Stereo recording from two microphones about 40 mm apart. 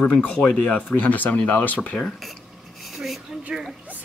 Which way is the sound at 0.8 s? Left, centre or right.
Left.